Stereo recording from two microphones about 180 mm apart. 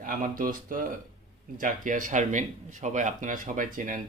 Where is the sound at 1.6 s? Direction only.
45° right (ahead or behind).